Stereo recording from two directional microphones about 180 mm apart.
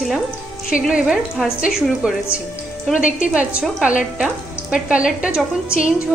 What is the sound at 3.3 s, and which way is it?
A woman's voice, 5° right (ahead or behind).